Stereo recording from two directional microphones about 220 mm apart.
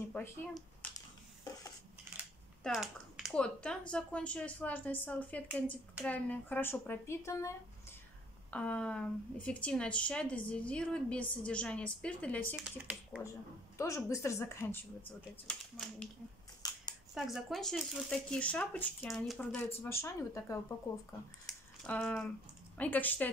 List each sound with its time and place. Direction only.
0.1 s a sound: 15° left (ahead or behind)
2.6 s a woman's voice: centre (ahead or behind)
12.5 s a woman's voice: 5° right (ahead or behind)
13.7 s a woman's voice: 15° left (ahead or behind)
16.6 s scissors: 15° left (ahead or behind)
17.1 s a woman's voice: centre (ahead or behind)
21.5 s typing: 5° left (ahead or behind)
22.8 s speech: 10° left (ahead or behind)